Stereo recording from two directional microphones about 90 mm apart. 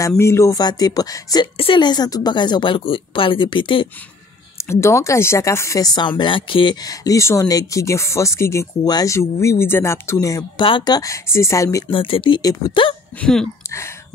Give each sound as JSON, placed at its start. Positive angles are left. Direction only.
{"t": 0.2, "sound": "speech", "side_deg": 30}
{"t": 0.6, "sound": "speech", "side_deg": 50}
{"t": 1.6, "sound": "a woman's voice", "side_deg": 80}
{"t": 1.9, "sound": "speech", "side_deg": 45}
{"t": 4.6, "sound": "speech", "side_deg": 30}
{"t": 5.8, "sound": "speech", "side_deg": 50}
{"t": 6.8, "sound": "speech", "side_deg": 40}
{"t": 8.8, "sound": "speech", "side_deg": 45}
{"t": 9.1, "sound": "speech", "side_deg": 35}
{"t": 10.8, "sound": "speech", "side_deg": 45}
{"t": 11.9, "sound": "speech", "side_deg": 75}
{"t": 12.4, "sound": "speech", "side_deg": 45}
{"t": 13.2, "sound": "speech", "side_deg": 5}
{"t": 13.7, "sound": "speech", "side_deg": 30}